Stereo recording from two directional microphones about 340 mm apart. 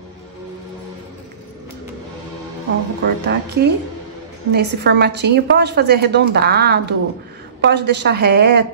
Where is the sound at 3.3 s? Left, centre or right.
Right.